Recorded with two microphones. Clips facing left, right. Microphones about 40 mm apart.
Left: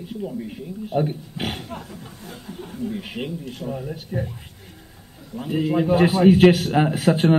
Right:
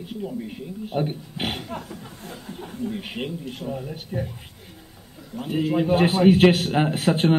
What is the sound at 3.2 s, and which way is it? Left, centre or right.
Speech, centre.